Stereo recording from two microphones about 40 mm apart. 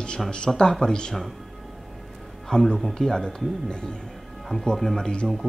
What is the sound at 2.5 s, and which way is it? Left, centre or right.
Speech, centre.